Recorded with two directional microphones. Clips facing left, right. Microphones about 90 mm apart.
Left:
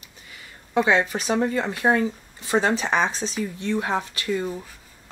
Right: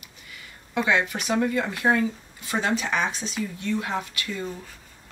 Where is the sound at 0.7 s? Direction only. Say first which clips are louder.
Left 3 dB; 30° left (ahead or behind).